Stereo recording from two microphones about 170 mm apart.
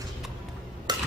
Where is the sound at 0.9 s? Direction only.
25° right (ahead or behind).